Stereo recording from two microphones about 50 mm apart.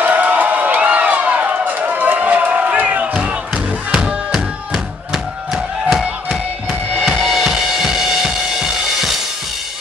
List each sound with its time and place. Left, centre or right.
0.0 s a sound: right
3.9 s music: centre
7.2 s drum kit: centre